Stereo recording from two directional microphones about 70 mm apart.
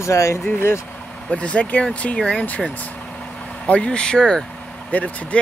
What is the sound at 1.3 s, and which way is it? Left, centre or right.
Speech, centre.